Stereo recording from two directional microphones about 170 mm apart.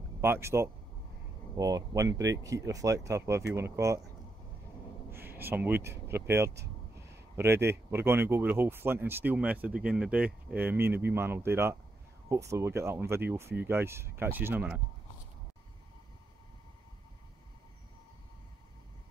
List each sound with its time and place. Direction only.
0.2 s speech: 15° right (ahead or behind)
5.1 s a sound: 10° right (ahead or behind)
7.9 s speech: 15° right (ahead or behind)